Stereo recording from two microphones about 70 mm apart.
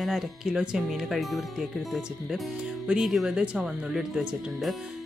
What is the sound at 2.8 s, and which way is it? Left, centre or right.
Speech, centre.